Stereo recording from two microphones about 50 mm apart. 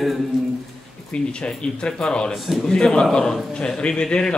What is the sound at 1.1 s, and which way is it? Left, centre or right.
Speech, centre.